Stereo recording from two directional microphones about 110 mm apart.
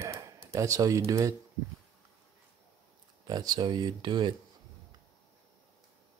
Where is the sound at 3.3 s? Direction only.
35° right (ahead or behind).